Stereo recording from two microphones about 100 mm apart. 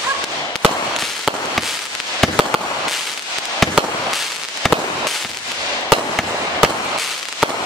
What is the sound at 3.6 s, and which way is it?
Fireworks, centre (ahead or behind).